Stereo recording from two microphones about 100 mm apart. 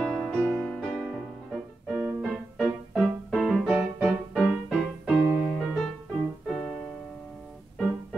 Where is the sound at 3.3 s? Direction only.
5° left (ahead or behind).